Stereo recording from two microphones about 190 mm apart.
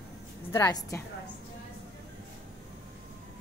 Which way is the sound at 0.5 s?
15° left (ahead or behind).